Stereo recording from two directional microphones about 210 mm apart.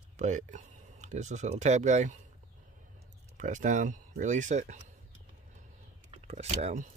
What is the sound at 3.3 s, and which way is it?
Speech, 35° right (ahead or behind).